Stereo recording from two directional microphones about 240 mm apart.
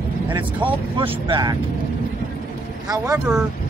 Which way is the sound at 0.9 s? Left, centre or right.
Centre.